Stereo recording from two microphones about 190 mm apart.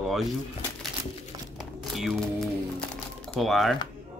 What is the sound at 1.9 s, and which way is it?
Speech, centre (ahead or behind).